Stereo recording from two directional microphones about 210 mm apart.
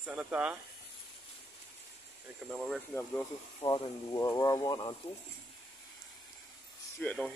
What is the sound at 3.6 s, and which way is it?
Speech, 20° left (ahead or behind).